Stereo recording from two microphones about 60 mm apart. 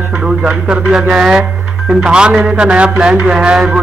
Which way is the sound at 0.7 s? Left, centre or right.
Centre.